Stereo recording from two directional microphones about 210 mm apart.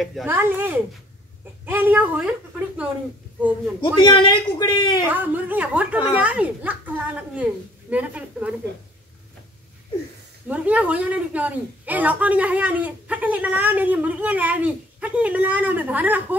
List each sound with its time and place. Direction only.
0.0 s speech: centre (ahead or behind)
0.3 s a woman's voice: 10° right (ahead or behind)
3.8 s speech: 20° left (ahead or behind)
5.0 s a woman's voice: 10° right (ahead or behind)
10.5 s a woman's voice: 5° right (ahead or behind)